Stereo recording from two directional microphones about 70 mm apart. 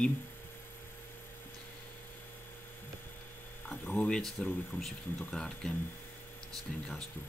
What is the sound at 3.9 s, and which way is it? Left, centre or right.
Speech, centre.